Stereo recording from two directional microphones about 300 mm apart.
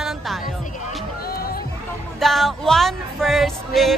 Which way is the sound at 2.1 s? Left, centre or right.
Centre.